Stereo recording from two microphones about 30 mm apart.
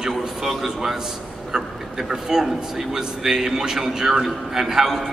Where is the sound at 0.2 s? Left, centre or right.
Centre.